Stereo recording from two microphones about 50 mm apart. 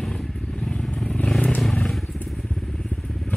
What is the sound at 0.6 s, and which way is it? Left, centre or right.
Vehicle, centre.